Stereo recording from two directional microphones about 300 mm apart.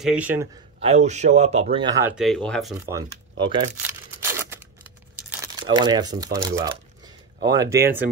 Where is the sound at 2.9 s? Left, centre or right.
Centre.